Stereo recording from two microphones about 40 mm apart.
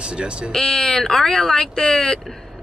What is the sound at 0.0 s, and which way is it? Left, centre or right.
Speech, right.